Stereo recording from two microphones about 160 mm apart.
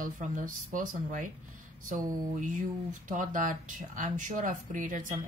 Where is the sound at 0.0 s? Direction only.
55° right (ahead or behind).